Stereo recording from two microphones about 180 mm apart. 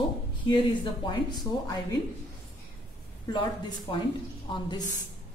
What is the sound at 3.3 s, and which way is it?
Speech, 25° left (ahead or behind).